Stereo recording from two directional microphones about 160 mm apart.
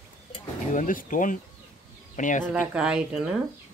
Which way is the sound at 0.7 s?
55° left (ahead or behind).